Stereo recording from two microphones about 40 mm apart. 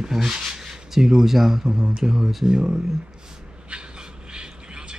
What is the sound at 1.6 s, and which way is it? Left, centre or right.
Speech, centre.